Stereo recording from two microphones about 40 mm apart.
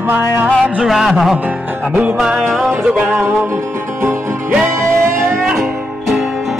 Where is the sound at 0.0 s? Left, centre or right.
Right.